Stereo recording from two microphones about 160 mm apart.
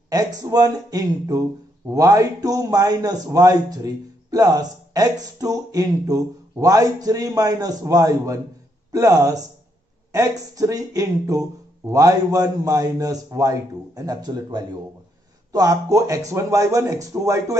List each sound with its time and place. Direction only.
0.1 s a man's voice: 20° right (ahead or behind)
10.5 s a man's voice: 20° right (ahead or behind)